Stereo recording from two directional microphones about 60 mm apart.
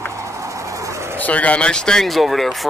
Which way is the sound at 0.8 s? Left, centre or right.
Right.